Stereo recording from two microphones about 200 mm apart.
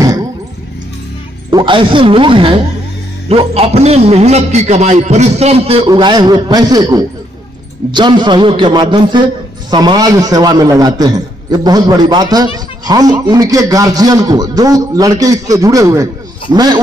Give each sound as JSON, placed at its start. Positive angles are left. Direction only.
{"t": 1.5, "sound": "a man's voice", "side_deg": -25}
{"t": 5.9, "sound": "a man's voice", "side_deg": -20}